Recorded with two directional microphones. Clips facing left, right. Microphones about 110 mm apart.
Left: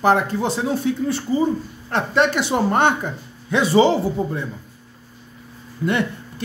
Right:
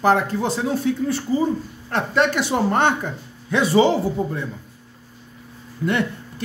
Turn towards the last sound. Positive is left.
turn(degrees=15)  # may be behind; listen again after turning